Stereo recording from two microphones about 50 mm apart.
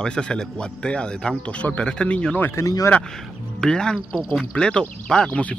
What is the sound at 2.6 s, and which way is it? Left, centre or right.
Speech, left.